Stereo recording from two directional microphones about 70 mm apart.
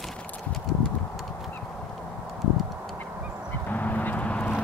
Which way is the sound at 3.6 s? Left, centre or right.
Left.